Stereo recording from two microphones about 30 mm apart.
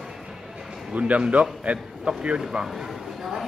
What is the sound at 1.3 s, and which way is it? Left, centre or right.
Speech, right.